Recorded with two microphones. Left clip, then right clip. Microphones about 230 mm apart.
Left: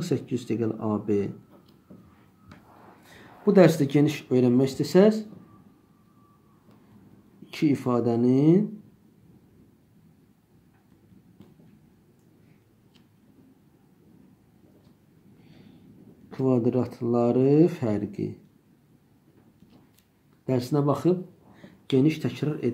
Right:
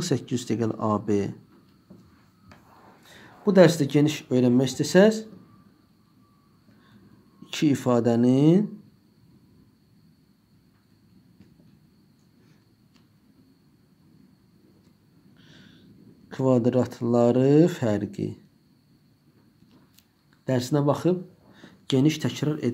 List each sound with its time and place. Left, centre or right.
0.0 s speech: right
3.1 s speech: centre
7.4 s speech: right
16.3 s speech: right
20.4 s speech: right